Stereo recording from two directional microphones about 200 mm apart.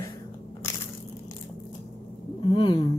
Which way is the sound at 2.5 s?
25° left (ahead or behind).